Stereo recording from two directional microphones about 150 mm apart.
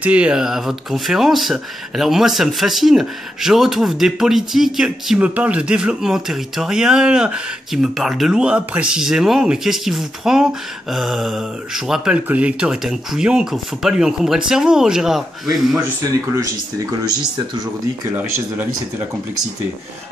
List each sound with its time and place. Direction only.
0.0 s speech: 10° right (ahead or behind)
16.0 s speech: 20° right (ahead or behind)